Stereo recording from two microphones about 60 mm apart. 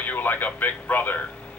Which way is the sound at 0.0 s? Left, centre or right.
Left.